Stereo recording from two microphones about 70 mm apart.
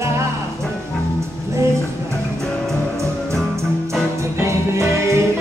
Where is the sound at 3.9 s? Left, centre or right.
Right.